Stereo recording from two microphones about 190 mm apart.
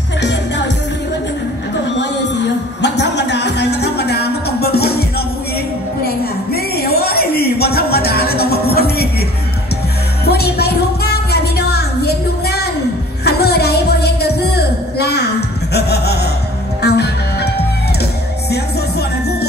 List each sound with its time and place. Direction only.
0.2 s music: 65° left (ahead or behind)
2.0 s music: 65° left (ahead or behind)
6.0 s a sound: 55° left (ahead or behind)
10.2 s music: 55° left (ahead or behind)
13.2 s a sound: 60° left (ahead or behind)
16.8 s music: 60° left (ahead or behind)